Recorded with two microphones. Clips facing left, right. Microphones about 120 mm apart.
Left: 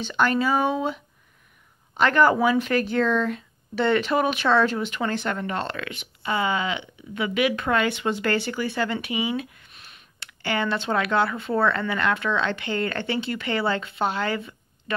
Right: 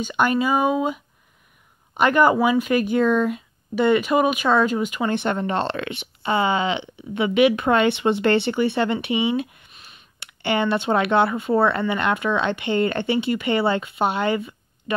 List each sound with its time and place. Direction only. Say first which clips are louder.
0.0 s speech: right 2 dB; 10° right (ahead or behind)
5.1 s speech: right 5 dB; 25° right (ahead or behind)
9.7 s a sound: right 1 dB; centre (ahead or behind)
10.2 s speech: right 4 dB; 20° right (ahead or behind)